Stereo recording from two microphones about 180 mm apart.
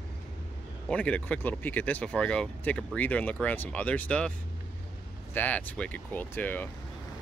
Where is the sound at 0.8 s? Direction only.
5° left (ahead or behind).